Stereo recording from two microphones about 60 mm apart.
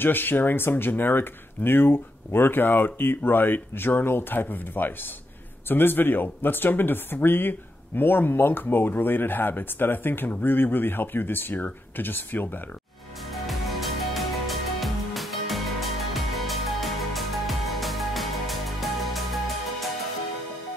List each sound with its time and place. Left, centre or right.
0.0 s speech: left
13.3 s music: centre